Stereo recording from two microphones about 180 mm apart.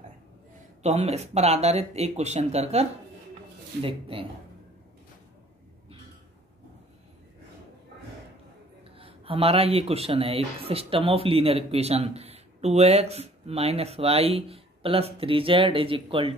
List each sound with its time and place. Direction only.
0.8 s a man's voice: 35° right (ahead or behind)
8.9 s a man's voice: 30° right (ahead or behind)